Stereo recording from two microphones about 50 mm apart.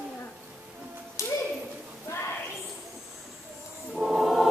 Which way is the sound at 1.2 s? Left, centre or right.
Left.